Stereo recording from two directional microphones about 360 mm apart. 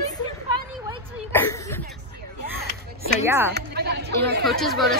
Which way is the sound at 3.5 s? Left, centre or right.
Right.